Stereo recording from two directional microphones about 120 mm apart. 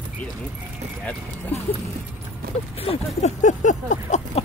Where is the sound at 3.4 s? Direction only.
90° left.